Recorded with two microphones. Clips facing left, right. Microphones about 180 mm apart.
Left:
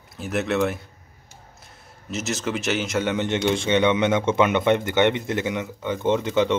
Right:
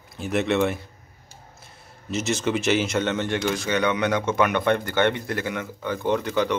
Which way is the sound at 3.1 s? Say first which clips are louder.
Left 2 dB; 20° left (ahead or behind).